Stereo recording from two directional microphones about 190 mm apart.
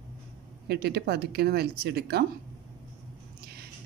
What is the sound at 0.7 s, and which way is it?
Speech, 60° right (ahead or behind).